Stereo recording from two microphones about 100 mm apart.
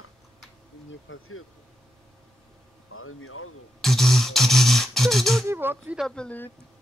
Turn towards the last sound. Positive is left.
turn(degrees=10)  # may be behind; listen again after turning